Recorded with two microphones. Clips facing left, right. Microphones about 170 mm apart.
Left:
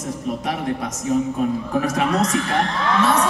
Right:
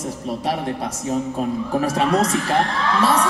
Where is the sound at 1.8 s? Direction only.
30° right (ahead or behind).